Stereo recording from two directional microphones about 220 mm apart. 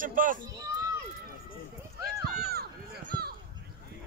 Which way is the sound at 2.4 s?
45° right (ahead or behind).